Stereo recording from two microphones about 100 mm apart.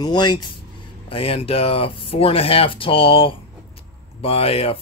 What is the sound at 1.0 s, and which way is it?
Speech, 70° left (ahead or behind).